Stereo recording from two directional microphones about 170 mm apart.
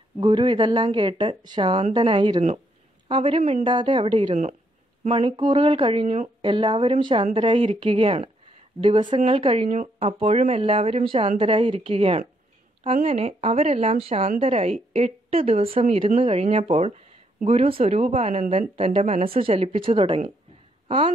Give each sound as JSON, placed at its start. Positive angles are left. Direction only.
{"t": 0.2, "sound": "a woman's voice", "side_deg": -30}